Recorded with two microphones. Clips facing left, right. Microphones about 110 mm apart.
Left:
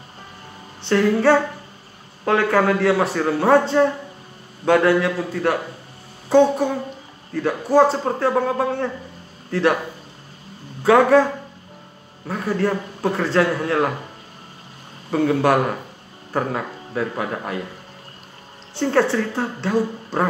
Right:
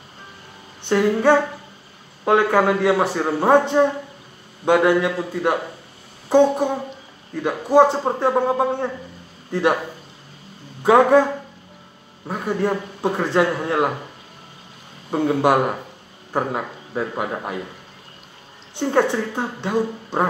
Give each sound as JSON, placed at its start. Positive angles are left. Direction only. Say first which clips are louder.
{"t": 0.8, "sound": "a man's voice", "louder": "even", "side_deg": -15}
{"t": 10.8, "sound": "speech", "louder": "even", "side_deg": -20}
{"t": 12.3, "sound": "a man's voice", "louder": "even", "side_deg": -15}
{"t": 15.0, "sound": "a man's voice", "louder": "even", "side_deg": -15}
{"t": 18.8, "sound": "a man's voice", "louder": "left 1 dB", "side_deg": -15}